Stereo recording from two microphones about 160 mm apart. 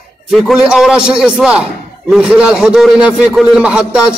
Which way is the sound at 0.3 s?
5° right (ahead or behind).